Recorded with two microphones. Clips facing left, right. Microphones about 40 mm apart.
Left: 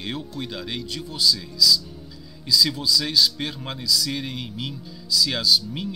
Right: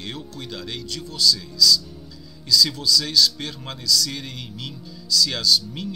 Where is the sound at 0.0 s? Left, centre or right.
Centre.